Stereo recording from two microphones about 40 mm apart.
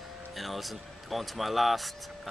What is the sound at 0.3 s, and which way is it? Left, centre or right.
Speech, centre.